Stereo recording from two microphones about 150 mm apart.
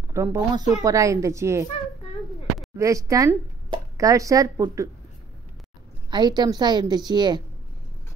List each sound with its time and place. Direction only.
0.1 s speech: 20° right (ahead or behind)
2.8 s speech: 20° right (ahead or behind)
6.0 s speech: 30° right (ahead or behind)